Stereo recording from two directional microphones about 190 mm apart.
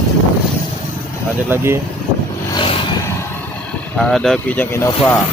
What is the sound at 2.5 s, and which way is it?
Vehicle, 25° left (ahead or behind).